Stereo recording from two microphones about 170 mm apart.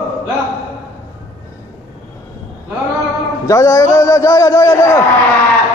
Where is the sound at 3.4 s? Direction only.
20° left (ahead or behind).